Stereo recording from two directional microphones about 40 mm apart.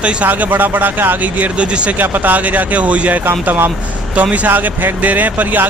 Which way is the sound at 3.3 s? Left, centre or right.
Right.